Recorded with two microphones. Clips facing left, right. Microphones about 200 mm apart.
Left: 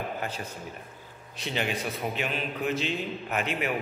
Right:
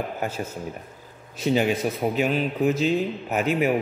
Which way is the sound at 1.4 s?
45° right (ahead or behind).